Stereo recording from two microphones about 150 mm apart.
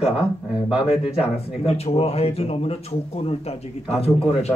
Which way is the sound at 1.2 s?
45° left (ahead or behind).